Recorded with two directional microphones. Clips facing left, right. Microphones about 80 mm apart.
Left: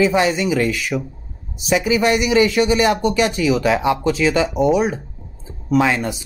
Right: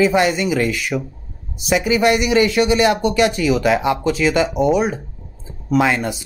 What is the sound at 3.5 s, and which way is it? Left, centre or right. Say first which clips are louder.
Speech: right 1 dB; right.